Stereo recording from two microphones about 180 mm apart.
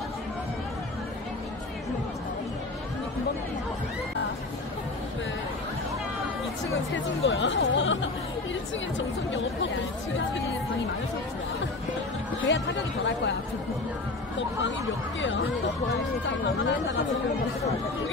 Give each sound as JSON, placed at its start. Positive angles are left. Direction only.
{"t": 7.2, "sound": "speech", "side_deg": 90}
{"t": 12.4, "sound": "speech", "side_deg": 80}
{"t": 15.1, "sound": "speech", "side_deg": 90}
{"t": 15.9, "sound": "speech", "side_deg": 75}